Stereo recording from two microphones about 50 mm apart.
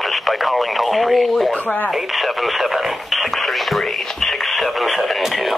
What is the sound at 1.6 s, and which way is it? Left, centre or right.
Speech, left.